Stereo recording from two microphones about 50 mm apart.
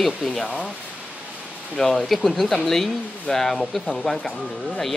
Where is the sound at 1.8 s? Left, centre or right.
Centre.